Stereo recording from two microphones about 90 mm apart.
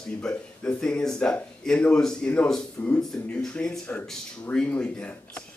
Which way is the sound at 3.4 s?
5° left (ahead or behind).